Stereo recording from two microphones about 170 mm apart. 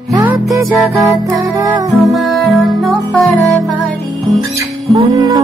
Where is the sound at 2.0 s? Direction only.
Centre (ahead or behind).